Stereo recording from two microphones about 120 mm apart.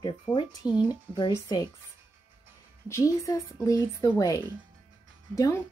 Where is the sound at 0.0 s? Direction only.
45° left (ahead or behind).